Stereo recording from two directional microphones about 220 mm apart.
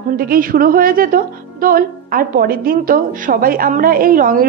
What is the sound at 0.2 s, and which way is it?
A woman's voice, 40° right (ahead or behind).